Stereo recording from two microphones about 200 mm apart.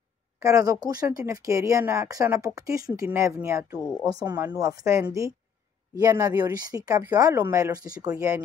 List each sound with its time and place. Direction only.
0.4 s speech: 15° right (ahead or behind)